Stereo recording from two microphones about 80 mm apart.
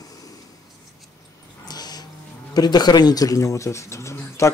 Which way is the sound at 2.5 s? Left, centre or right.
Left.